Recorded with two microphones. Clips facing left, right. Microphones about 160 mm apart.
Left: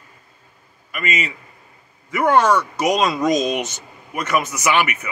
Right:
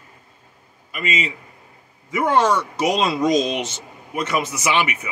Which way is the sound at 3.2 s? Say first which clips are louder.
Even; 50° left (ahead or behind).